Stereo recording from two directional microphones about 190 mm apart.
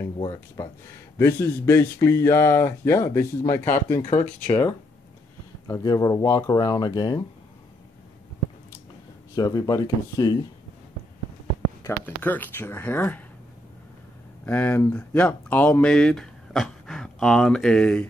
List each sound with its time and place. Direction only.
0.2 s speech: 20° left (ahead or behind)
9.3 s speech: 20° left (ahead or behind)
11.8 s speech: 10° left (ahead or behind)
14.4 s speech: 10° left (ahead or behind)